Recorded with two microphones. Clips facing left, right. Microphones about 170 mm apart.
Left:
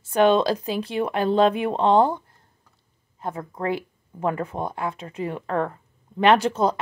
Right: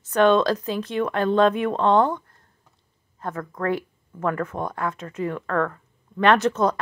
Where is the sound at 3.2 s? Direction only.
20° left (ahead or behind).